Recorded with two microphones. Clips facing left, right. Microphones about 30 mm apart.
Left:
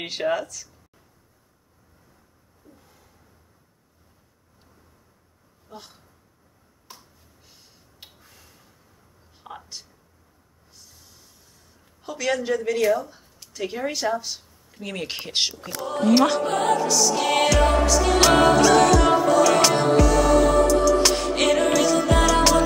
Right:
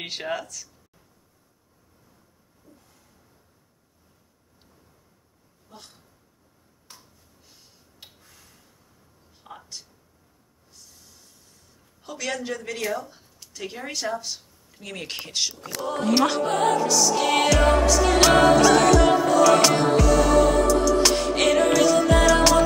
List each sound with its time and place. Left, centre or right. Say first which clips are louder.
0.0 s speech: left 5 dB; centre
2.7 s a sound: left 2 dB; left
5.7 s speech: left 5 dB; centre
7.4 s a sound: left 1 dB; centre
10.7 s snort: even; centre
12.0 s speech: left 5 dB; centre
15.8 s music: left 3 dB; centre